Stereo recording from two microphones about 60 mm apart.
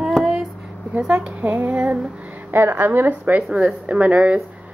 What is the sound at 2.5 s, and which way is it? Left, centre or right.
Speech, right.